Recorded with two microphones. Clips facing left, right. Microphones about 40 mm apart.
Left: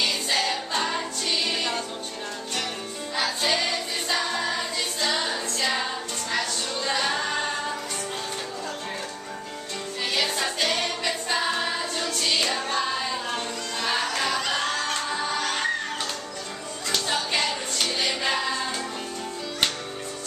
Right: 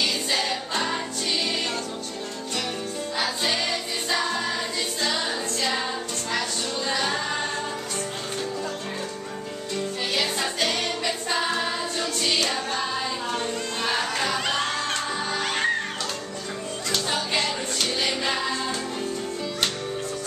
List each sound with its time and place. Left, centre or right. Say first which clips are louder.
0.0 s music: even; centre
3.2 s music: left 2 dB; centre
6.9 s music: left 1 dB; centre
10.1 s music: left 1 dB; centre
13.8 s music: even; centre
14.6 s music: even; right
16.9 s music: even; centre